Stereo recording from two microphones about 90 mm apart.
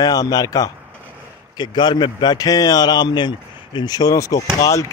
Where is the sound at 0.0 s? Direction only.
50° left (ahead or behind).